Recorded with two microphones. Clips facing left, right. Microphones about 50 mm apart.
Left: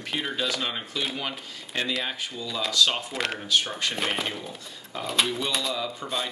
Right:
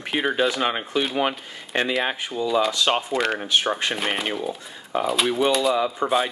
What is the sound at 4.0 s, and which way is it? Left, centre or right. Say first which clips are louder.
Speech: right 3 dB; centre.